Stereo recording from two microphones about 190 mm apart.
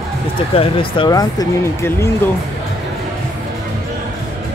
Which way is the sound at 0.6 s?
25° left (ahead or behind).